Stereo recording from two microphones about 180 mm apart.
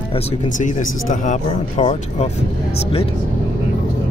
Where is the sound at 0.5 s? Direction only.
45° left (ahead or behind).